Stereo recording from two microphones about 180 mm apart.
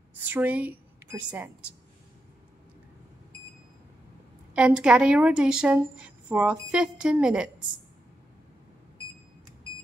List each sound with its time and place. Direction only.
0.1 s a woman's voice: 10° right (ahead or behind)
4.6 s a woman's voice: 5° right (ahead or behind)